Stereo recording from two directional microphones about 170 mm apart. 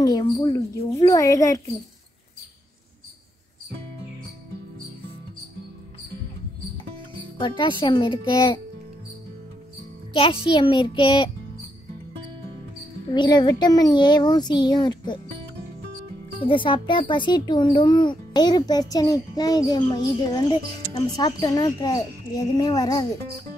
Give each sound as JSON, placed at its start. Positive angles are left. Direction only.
{"t": 0.0, "sound": "a child's voice", "side_deg": 20}
{"t": 7.3, "sound": "a child's voice", "side_deg": 30}
{"t": 10.1, "sound": "a child's voice", "side_deg": 30}
{"t": 13.1, "sound": "a child's voice", "side_deg": 25}
{"t": 16.4, "sound": "a child's voice", "side_deg": 30}